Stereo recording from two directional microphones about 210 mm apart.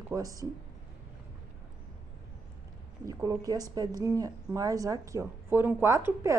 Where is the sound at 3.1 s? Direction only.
15° right (ahead or behind).